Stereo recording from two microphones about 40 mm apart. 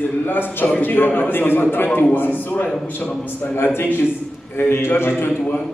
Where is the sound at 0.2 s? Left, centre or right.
Left.